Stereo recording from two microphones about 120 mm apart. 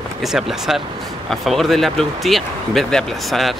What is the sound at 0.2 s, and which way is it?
Speech, centre (ahead or behind).